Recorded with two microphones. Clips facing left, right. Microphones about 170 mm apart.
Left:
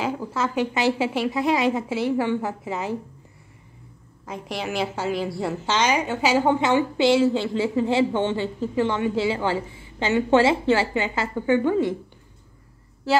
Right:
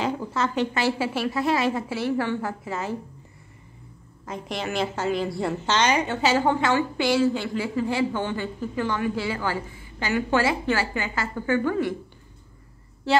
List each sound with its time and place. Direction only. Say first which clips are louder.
0.0 s a woman's voice: even; 5° left (ahead or behind)
4.3 s a woman's voice: left 1 dB; 10° left (ahead or behind)